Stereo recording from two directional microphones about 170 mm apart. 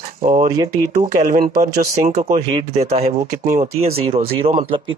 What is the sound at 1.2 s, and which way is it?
Speech, 45° right (ahead or behind).